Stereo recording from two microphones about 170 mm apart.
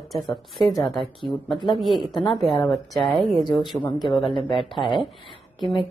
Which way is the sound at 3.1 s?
25° right (ahead or behind).